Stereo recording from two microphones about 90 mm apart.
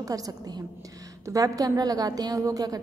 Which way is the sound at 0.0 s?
40° right (ahead or behind).